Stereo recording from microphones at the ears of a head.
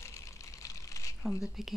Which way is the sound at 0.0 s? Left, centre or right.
Left.